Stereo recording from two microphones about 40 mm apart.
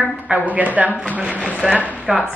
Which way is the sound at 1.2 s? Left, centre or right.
Centre.